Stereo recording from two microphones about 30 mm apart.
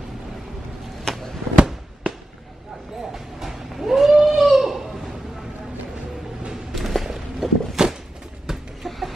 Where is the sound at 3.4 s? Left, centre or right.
Centre.